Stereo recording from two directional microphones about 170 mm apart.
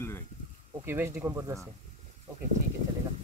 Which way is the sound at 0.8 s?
15° right (ahead or behind).